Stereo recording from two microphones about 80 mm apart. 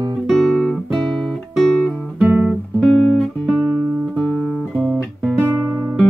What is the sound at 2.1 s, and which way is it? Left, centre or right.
Guitar, right.